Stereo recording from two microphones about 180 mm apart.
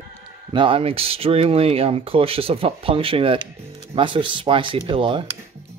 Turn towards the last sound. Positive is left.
turn(degrees=-25)  # may be behind; listen again after turning